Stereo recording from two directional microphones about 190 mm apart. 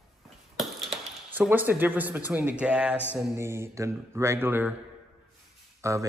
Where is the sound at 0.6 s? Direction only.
Centre (ahead or behind).